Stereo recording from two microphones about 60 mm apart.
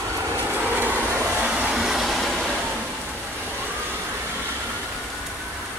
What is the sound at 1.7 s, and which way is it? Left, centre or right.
Train, centre.